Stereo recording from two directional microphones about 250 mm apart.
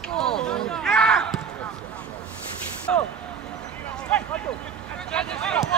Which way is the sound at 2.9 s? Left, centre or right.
Centre.